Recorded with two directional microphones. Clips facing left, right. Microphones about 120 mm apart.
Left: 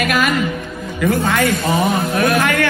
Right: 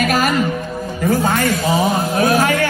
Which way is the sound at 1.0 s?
55° left (ahead or behind).